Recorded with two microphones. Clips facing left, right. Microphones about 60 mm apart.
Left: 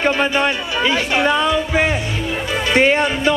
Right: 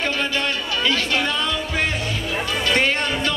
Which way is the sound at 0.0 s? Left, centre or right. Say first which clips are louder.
Left 6 dB; left.